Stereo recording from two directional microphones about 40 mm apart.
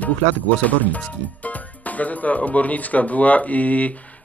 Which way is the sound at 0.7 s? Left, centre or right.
Left.